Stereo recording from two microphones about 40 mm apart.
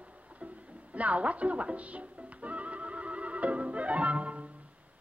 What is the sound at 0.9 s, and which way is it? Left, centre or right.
Music, right.